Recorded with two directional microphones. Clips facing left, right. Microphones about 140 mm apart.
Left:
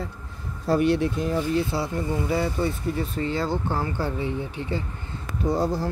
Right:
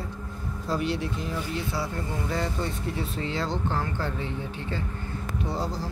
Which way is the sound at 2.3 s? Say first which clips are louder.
Left 4 dB; 5° left (ahead or behind).